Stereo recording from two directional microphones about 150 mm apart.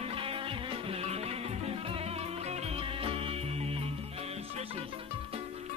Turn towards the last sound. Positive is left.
turn(degrees=-40)  # may be behind; listen again after turning